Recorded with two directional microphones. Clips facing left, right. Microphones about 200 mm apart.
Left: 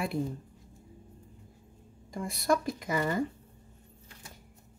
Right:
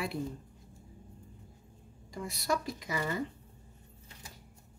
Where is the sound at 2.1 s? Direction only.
50° left (ahead or behind).